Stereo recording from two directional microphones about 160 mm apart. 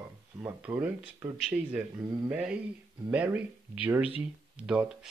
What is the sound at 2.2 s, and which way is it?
Speech, 10° right (ahead or behind).